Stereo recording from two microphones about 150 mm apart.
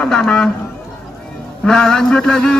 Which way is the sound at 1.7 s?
5° left (ahead or behind).